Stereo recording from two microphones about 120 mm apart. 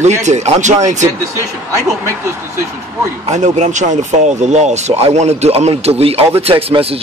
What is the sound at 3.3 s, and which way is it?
Speech, 75° right (ahead or behind).